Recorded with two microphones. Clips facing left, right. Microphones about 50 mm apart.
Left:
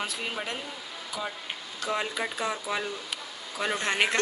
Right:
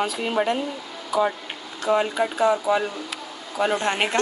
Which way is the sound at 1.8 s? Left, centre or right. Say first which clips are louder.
Right 9 dB; centre.